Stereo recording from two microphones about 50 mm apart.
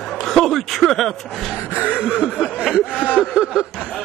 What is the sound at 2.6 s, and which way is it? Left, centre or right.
Speech, centre.